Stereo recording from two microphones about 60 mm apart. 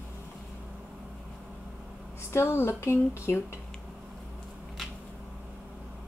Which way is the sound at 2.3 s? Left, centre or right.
Left.